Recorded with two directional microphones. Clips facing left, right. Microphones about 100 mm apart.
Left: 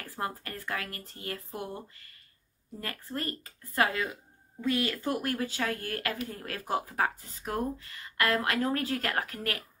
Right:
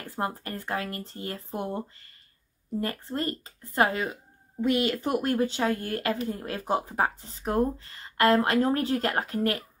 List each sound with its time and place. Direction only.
0.0 s speech: 25° right (ahead or behind)